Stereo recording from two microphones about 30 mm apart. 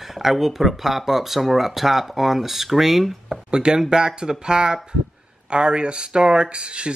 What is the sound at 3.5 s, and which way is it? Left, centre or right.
Speech, right.